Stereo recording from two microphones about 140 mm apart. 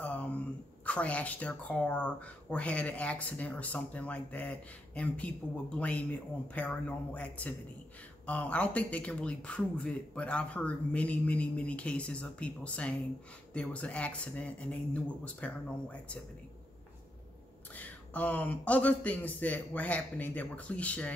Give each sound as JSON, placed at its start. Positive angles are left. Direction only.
{"t": 0.0, "sound": "a sound", "side_deg": 10}
{"t": 0.8, "sound": "speech", "side_deg": 10}
{"t": 17.7, "sound": "speech", "side_deg": 10}